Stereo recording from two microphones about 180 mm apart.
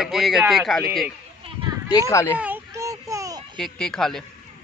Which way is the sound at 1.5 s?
30° right (ahead or behind).